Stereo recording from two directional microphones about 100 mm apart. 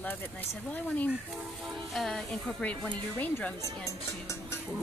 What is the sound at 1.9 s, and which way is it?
Speech, 5° left (ahead or behind).